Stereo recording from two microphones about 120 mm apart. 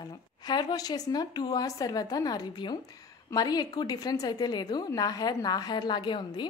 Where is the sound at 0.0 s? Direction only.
35° left (ahead or behind).